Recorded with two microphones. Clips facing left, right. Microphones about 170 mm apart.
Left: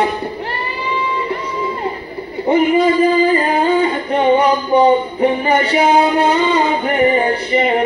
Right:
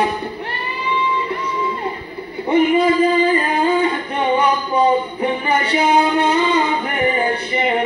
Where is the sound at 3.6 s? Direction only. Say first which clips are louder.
Left 2 dB; 30° left (ahead or behind).